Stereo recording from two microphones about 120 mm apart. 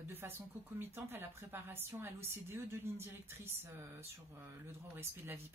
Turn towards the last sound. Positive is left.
turn(degrees=-20)  # may be behind; listen again after turning